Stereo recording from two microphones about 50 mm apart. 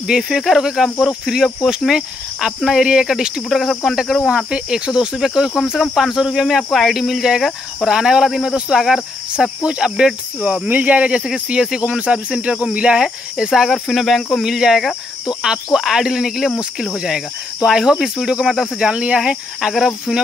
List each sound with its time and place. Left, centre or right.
0.0 s cricket: centre
3.4 s speech: centre
4.5 s cricket: centre
6.4 s cricket: centre
10.7 s speech: right
11.2 s cricket: centre
13.7 s speech: centre
14.4 s cricket: centre
18.8 s speech: right